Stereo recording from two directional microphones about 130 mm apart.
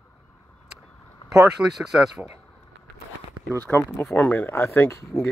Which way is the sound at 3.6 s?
20° left (ahead or behind).